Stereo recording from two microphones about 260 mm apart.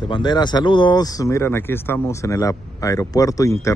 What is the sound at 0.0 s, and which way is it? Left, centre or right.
Speech, centre.